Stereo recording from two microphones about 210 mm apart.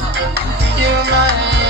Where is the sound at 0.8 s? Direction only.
55° right (ahead or behind).